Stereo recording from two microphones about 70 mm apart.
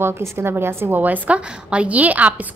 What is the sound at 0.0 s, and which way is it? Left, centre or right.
A woman's voice, right.